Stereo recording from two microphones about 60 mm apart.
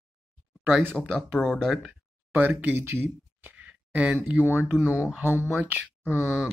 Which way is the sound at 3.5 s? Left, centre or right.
Right.